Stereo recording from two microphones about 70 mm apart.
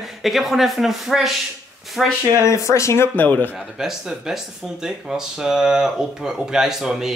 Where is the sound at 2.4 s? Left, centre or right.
Left.